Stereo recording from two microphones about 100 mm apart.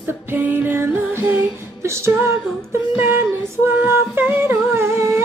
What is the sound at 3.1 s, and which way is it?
Singing, 25° right (ahead or behind).